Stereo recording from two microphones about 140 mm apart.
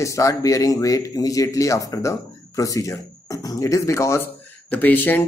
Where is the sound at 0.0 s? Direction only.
20° left (ahead or behind).